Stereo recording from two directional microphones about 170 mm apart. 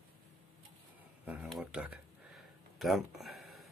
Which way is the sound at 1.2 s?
10° right (ahead or behind).